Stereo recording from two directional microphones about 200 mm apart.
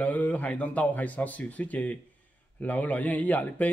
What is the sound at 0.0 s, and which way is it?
A man's voice, 5° left (ahead or behind).